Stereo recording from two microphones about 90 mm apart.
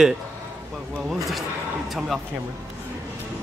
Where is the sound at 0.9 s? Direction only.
Centre (ahead or behind).